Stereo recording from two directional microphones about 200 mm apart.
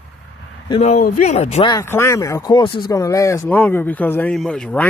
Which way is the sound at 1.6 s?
15° left (ahead or behind).